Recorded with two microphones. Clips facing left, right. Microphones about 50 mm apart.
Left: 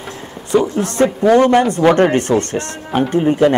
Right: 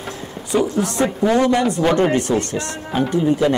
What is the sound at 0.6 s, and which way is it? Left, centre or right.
Speech, centre.